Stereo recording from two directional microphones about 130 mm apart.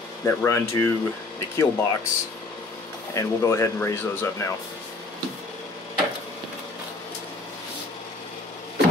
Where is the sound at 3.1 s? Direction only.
20° left (ahead or behind).